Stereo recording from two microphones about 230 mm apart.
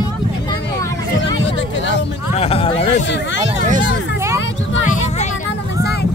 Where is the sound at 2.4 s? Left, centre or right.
Left.